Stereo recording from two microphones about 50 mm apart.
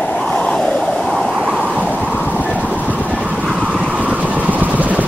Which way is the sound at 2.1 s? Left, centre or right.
Left.